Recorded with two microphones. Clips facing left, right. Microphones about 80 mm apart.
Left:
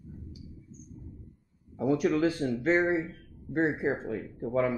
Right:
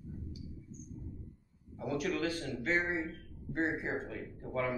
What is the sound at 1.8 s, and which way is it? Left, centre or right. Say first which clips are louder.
Speech: left 9 dB; left.